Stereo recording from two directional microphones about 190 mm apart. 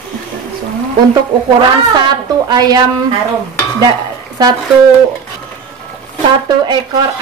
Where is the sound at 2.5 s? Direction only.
20° right (ahead or behind).